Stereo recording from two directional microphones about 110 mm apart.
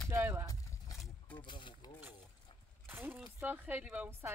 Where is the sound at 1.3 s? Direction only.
45° left (ahead or behind).